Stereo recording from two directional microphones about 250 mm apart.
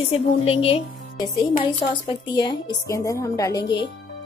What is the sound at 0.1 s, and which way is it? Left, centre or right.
A woman's voice, left.